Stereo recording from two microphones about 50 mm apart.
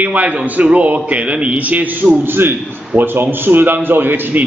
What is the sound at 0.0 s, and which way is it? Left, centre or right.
A man's voice, right.